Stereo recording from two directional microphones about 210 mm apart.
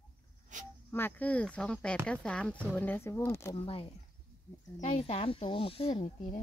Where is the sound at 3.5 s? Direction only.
25° left (ahead or behind).